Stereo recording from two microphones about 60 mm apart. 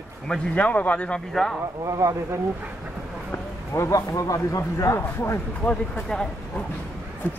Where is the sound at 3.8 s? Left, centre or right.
Left.